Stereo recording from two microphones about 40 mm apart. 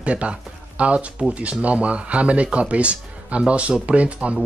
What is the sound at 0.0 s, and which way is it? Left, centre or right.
Speech, right.